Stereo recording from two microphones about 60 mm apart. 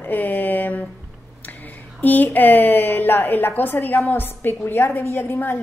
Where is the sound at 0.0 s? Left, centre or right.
Left.